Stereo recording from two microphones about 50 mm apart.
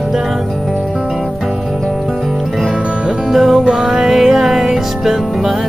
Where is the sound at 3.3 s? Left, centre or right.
Centre.